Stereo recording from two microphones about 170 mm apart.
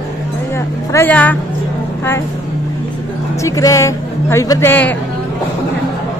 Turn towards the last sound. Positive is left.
turn(degrees=10)  # may be behind; listen again after turning